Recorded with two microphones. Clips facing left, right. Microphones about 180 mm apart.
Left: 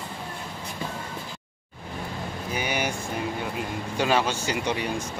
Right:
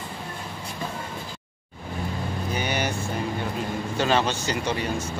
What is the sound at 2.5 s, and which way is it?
Vehicle, 10° left (ahead or behind).